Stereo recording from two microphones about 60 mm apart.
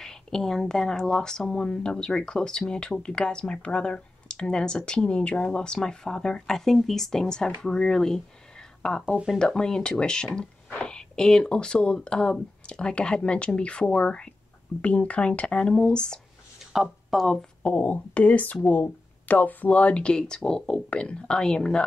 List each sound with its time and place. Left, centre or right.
0.0 s speech: centre
9.0 s speech: centre
9.4 s speech: centre
16.7 s speech: centre
17.6 s speech: left